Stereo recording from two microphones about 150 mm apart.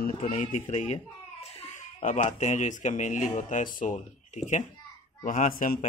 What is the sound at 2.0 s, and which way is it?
A man's voice, 50° left (ahead or behind).